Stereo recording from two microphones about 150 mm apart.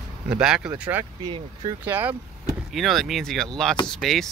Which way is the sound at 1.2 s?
40° right (ahead or behind).